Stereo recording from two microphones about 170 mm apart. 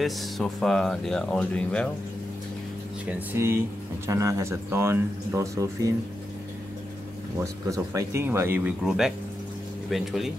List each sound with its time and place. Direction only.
0.0 s speech: centre (ahead or behind)
3.1 s speech: 15° right (ahead or behind)
7.7 s speech: 20° right (ahead or behind); by 10.3 s centre (ahead or behind)